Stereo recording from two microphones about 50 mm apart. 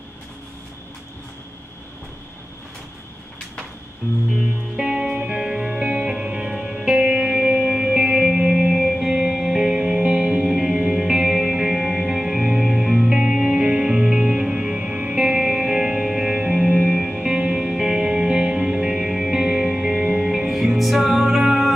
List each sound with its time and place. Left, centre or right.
4.3 s music: centre